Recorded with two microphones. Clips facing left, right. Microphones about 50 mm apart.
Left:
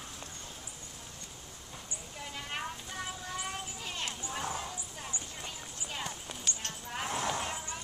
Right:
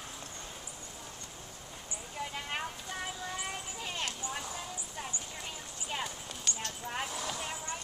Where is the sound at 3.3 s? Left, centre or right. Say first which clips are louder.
Even; centre.